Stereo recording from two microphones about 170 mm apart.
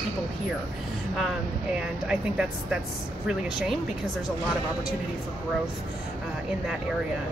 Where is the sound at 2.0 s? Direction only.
5° right (ahead or behind).